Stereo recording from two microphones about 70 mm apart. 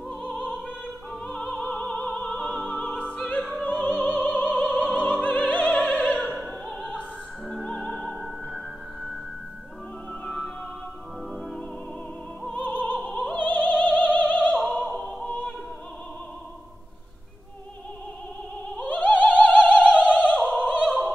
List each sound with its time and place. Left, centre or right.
1.4 s opera: centre
3.6 s music: left
4.0 s opera: left
6.2 s opera: centre
7.7 s music: centre
10.2 s music: centre
12.5 s opera: left
12.9 s opera: centre
13.3 s opera: left
14.6 s opera: centre
15.2 s opera: centre
18.8 s opera: left
19.5 s opera: centre